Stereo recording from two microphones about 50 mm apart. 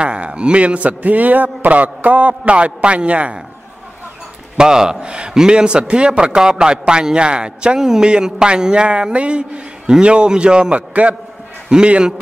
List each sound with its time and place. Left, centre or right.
0.0 s a man's voice: centre
4.6 s a man's voice: centre
10.9 s a man's voice: right
11.7 s a man's voice: centre